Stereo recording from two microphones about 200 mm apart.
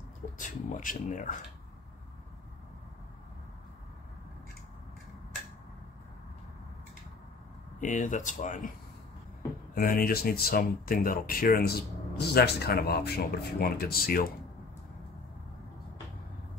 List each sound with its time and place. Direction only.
0.4 s speech: 40° left (ahead or behind)
7.8 s speech: 40° left (ahead or behind)
9.8 s speech: 45° left (ahead or behind)